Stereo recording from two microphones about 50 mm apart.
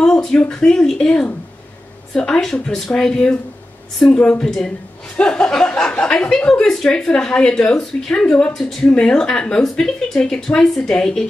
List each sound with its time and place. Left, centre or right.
0.3 s a woman's voice: centre
8.5 s a woman's voice: centre